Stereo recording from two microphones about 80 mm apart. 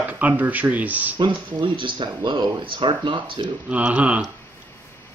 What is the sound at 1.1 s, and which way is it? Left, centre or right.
Speech, right.